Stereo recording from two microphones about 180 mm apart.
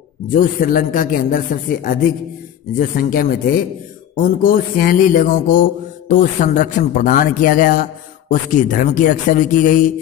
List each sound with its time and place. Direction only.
0.3 s mantra: 50° left (ahead or behind)